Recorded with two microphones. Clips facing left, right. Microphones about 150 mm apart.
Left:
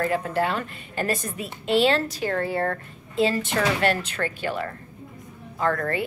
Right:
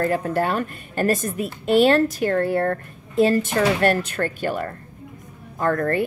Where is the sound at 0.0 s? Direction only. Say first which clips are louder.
Right 3 dB; 45° right (ahead or behind).